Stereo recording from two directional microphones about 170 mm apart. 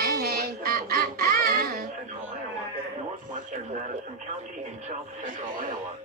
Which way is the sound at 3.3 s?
45° right (ahead or behind).